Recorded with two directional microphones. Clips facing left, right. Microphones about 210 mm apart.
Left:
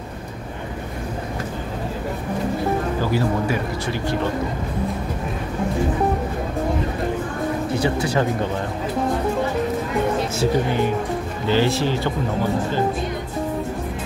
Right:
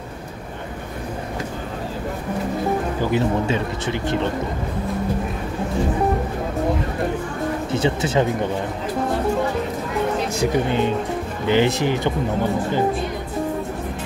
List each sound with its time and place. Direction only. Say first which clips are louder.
3.0 s speech: right 1 dB; 20° right (ahead or behind)
7.7 s speech: right 2 dB; 25° right (ahead or behind)
10.4 s speech: even; 20° right (ahead or behind)